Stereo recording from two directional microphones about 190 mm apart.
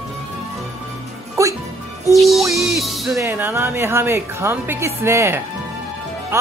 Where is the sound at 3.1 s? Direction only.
10° right (ahead or behind).